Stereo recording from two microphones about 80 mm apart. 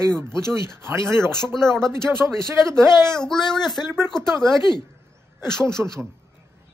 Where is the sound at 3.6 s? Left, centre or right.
Left.